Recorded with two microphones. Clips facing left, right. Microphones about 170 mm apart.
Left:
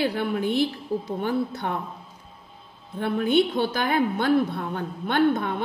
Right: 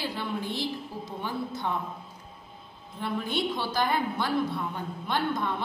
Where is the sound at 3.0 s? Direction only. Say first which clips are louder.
Left 8 dB; 60° left (ahead or behind).